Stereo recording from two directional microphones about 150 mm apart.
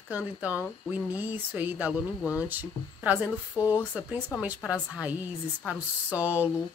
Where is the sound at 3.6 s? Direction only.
20° left (ahead or behind).